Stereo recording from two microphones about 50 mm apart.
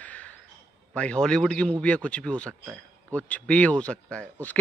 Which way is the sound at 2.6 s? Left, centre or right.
Right.